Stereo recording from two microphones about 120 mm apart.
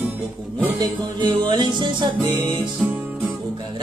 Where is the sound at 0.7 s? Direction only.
35° right (ahead or behind).